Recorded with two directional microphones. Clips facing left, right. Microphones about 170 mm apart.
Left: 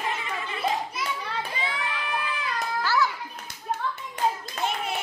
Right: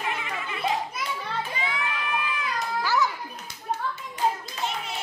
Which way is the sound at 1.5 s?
30° left (ahead or behind).